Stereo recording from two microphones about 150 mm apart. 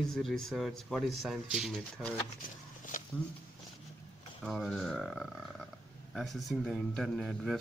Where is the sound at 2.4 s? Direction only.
60° left (ahead or behind).